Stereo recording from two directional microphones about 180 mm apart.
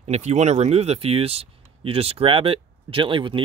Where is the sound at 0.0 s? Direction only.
40° right (ahead or behind).